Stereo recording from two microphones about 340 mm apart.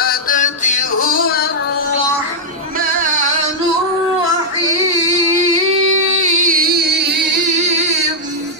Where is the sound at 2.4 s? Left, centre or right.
Right.